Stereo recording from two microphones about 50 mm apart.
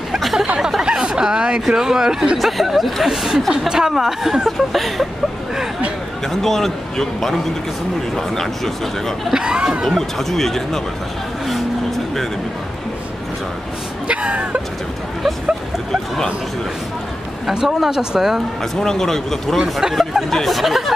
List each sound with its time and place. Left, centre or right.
0.2 s a sound: centre
0.6 s speech: centre
2.3 s speech: centre
4.5 s speech: centre
6.2 s a man's voice: centre
8.4 s a man's voice: centre
9.3 s speech: centre
9.8 s speech: centre
14.0 s speech: right
17.5 s speech: centre
18.6 s a man's voice: centre
19.8 s speech: centre
20.2 s speech: centre